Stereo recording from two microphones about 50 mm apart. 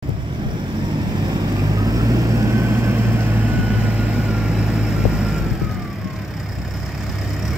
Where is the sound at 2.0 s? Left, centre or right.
Right.